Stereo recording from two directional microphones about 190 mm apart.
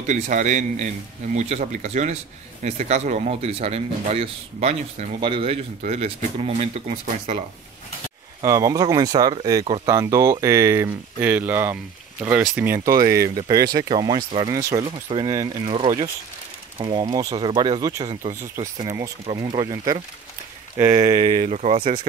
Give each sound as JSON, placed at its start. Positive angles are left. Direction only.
{"t": 0.0, "sound": "speech", "side_deg": -40}
{"t": 8.4, "sound": "speech", "side_deg": -15}
{"t": 19.3, "sound": "speech", "side_deg": -20}
{"t": 21.3, "sound": "speech", "side_deg": -35}